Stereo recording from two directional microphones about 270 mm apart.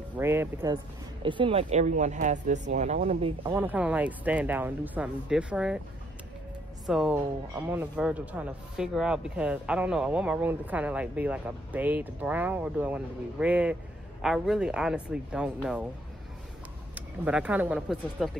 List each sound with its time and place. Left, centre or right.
0.2 s speech: centre
3.5 s speech: centre
6.9 s speech: centre
16.9 s speech: centre